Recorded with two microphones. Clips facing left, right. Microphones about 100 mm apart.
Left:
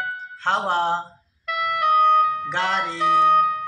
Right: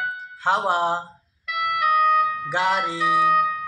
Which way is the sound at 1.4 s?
35° left (ahead or behind).